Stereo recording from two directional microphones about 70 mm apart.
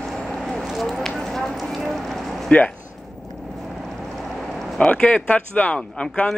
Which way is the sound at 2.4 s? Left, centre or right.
Centre.